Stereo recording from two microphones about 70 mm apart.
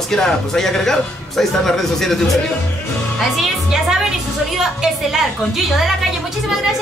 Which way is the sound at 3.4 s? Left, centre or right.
Centre.